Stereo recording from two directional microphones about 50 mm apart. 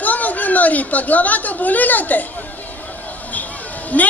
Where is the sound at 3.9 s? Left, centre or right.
Left.